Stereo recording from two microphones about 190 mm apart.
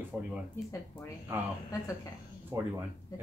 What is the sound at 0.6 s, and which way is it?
Speech, 10° left (ahead or behind).